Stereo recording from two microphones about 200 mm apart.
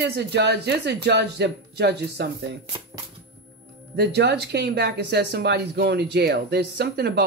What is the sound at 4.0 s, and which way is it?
Speech, 55° right (ahead or behind).